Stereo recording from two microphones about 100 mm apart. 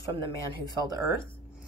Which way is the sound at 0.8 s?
35° right (ahead or behind).